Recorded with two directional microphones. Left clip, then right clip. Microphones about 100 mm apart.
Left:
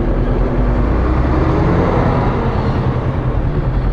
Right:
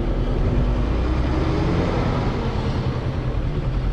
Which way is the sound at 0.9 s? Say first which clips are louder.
Left 7 dB; 45° right (ahead or behind).